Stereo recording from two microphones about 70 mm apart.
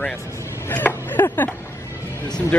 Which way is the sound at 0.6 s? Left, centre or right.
Left.